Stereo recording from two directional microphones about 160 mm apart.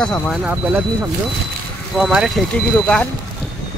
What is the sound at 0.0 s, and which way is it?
Speech, 5° left (ahead or behind).